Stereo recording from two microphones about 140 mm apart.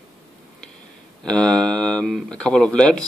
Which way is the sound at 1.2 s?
5° left (ahead or behind).